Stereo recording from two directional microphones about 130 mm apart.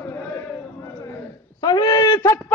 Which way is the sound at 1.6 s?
30° left (ahead or behind).